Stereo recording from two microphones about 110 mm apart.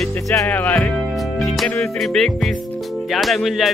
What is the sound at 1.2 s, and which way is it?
Music, centre (ahead or behind).